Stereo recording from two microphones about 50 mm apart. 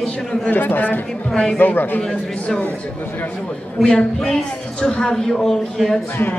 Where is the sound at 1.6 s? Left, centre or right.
Left.